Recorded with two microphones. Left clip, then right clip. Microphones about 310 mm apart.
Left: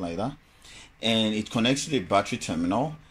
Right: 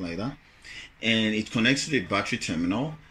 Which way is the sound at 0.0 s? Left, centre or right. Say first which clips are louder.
Left 3 dB; centre.